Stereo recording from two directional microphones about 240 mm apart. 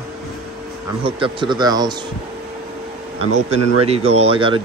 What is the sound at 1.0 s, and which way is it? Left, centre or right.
Speech, right.